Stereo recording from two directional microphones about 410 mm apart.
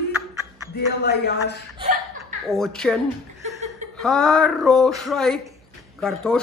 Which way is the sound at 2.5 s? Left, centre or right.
Centre.